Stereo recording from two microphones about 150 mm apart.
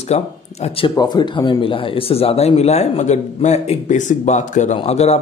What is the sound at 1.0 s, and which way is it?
Speech, 30° left (ahead or behind).